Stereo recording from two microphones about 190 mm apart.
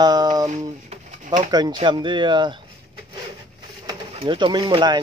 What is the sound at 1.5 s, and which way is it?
Speech, 20° right (ahead or behind).